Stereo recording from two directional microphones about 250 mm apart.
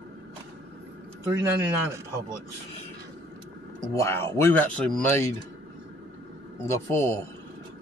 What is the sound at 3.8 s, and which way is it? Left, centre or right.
A man's voice, centre.